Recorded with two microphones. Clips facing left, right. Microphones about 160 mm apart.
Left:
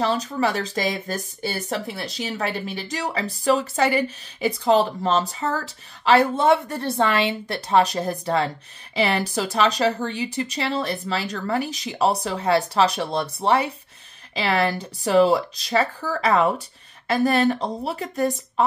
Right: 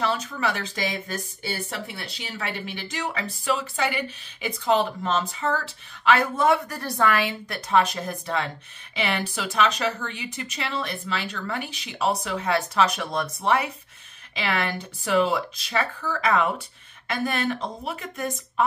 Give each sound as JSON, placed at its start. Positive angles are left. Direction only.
{"t": 0.0, "sound": "a woman's voice", "side_deg": 35}